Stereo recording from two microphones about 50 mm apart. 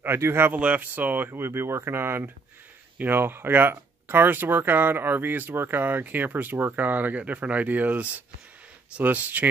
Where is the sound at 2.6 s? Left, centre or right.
Right.